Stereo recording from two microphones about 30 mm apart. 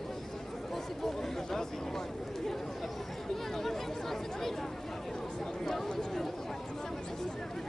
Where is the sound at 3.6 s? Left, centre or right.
Centre.